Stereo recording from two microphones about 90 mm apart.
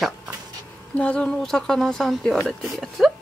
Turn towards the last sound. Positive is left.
turn(degrees=0)  # may be behind; listen again after turning